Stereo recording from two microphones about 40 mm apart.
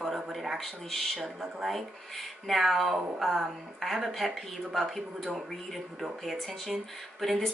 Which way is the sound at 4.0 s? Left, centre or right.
Centre.